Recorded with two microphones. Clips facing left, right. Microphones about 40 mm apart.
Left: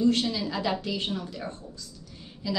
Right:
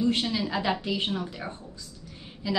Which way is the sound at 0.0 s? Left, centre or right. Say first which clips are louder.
Left 2 dB; centre.